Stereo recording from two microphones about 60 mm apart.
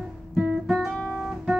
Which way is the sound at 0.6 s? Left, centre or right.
Centre.